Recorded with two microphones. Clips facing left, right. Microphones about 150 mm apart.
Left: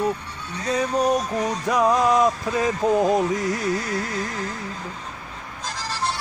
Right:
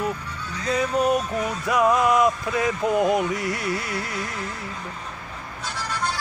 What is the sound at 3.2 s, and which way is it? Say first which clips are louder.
Carnatic music: left 3 dB; 40° left (ahead or behind).